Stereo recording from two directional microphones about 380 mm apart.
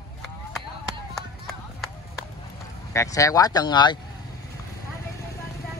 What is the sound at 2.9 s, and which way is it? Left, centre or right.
Speech, centre.